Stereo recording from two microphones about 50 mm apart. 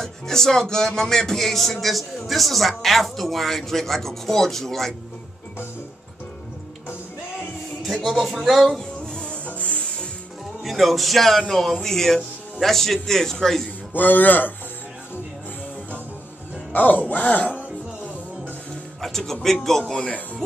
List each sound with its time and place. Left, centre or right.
0.0 s music: centre
2.8 s speech: centre
7.8 s speech: centre
9.0 s music: centre
9.5 s music: left
10.6 s speech: centre
11.8 s music: centre
13.9 s speech: left
16.7 s speech: left
18.9 s speech: centre
19.4 s music: centre